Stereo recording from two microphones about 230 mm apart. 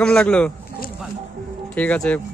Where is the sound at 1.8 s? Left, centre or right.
Centre.